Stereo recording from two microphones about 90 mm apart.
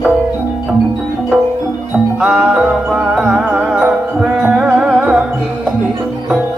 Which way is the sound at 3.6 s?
15° right (ahead or behind).